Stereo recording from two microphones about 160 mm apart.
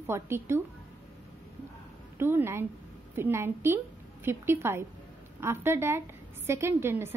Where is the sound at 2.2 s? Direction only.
15° right (ahead or behind).